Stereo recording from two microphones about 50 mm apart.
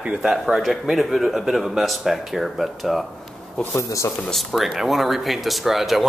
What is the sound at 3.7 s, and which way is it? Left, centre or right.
Speech, left.